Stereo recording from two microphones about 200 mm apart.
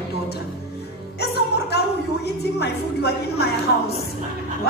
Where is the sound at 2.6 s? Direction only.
55° left (ahead or behind).